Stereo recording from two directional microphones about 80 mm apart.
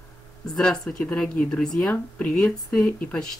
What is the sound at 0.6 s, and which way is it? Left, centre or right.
Speech, centre.